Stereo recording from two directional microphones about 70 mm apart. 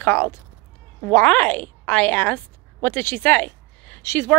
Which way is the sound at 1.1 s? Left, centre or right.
Left.